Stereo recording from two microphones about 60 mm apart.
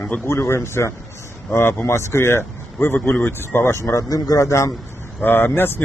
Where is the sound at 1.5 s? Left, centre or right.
Left.